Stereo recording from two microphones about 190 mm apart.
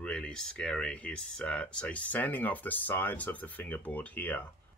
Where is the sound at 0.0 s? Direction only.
5° left (ahead or behind).